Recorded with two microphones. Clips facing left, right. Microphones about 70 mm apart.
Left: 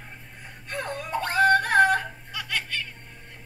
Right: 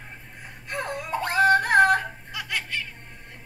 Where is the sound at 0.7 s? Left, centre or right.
Centre.